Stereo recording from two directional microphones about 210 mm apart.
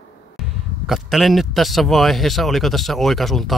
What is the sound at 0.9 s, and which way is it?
A man's voice, centre (ahead or behind).